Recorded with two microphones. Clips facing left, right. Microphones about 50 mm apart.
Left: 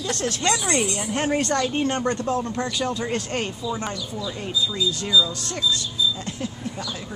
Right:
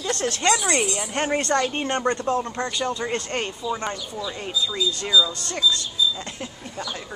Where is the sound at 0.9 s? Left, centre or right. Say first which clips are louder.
Left 1 dB; centre.